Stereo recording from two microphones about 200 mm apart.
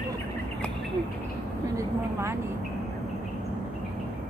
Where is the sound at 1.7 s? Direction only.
15° right (ahead or behind).